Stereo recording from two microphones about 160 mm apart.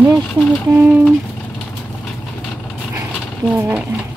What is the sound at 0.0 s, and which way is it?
Speech, 10° right (ahead or behind).